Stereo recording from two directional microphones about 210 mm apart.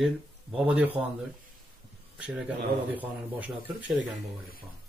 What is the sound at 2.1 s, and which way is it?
A man's voice, 5° right (ahead or behind).